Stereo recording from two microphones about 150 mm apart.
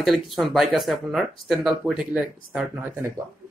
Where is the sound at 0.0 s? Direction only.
Centre (ahead or behind).